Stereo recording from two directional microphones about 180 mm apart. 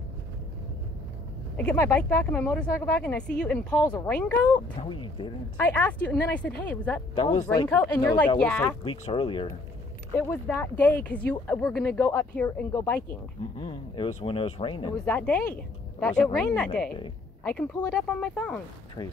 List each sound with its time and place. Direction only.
1.6 s speech: 10° left (ahead or behind)
3.7 s speech: 20° left (ahead or behind)
4.1 s speech: 10° left (ahead or behind)
4.7 s speech: 25° left (ahead or behind)
5.6 s speech: 10° left (ahead or behind)
7.4 s speech: 20° left (ahead or behind)
8.8 s speech: 30° left (ahead or behind)
10.1 s speech: 15° left (ahead or behind)
13.6 s speech: 25° left (ahead or behind)
15.0 s speech: 5° left (ahead or behind)
19.0 s speech: 25° left (ahead or behind)